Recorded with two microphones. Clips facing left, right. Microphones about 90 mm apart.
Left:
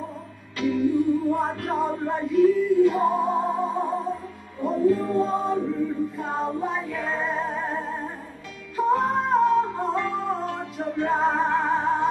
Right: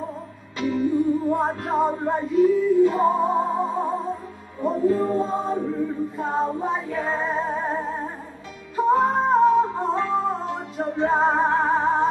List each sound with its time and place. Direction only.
0.6 s music: 25° right (ahead or behind)
4.6 s chant: 25° right (ahead or behind)
6.1 s music: 30° right (ahead or behind)
7.5 s music: 25° right (ahead or behind)